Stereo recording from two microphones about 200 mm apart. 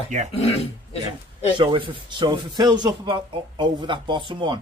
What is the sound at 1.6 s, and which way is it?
Speech, 25° right (ahead or behind).